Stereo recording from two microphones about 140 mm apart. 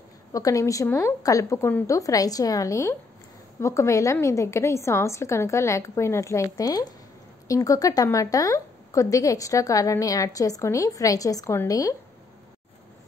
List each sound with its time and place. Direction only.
0.3 s a woman's voice: 25° left (ahead or behind)